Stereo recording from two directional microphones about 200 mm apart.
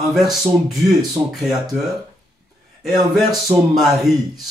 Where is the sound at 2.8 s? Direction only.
Centre (ahead or behind).